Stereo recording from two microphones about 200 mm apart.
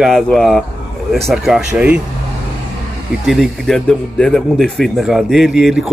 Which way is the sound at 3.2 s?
Centre (ahead or behind).